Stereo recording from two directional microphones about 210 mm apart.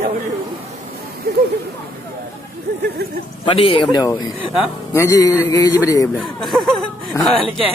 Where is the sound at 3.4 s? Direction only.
25° left (ahead or behind).